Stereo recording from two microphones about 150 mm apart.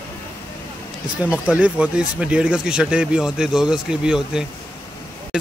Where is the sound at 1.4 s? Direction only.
5° right (ahead or behind).